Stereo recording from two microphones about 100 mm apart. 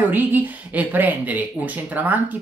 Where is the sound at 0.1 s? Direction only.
20° right (ahead or behind).